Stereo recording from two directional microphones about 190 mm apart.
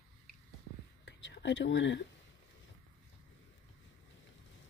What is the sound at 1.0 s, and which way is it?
Whispering, 65° left (ahead or behind).